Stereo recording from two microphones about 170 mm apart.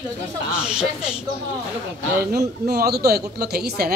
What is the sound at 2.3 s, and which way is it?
Speech, 65° right (ahead or behind).